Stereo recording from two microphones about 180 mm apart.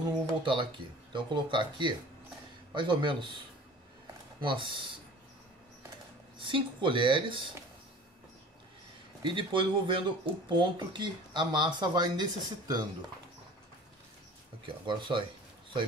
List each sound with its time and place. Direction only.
0.0 s speech: 25° right (ahead or behind)
4.4 s speech: 25° right (ahead or behind)
6.3 s speech: 30° right (ahead or behind)
9.2 s speech: 25° right (ahead or behind)
14.9 s speech: 25° right (ahead or behind)